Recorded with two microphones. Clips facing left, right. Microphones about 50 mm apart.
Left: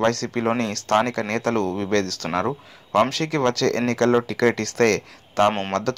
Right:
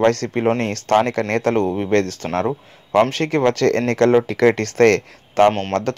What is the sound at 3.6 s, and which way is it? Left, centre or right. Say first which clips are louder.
Speech: right 4 dB; right.